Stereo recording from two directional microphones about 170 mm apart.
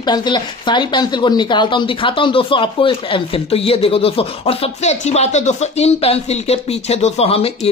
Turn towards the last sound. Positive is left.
turn(degrees=35)  # may be behind; listen again after turning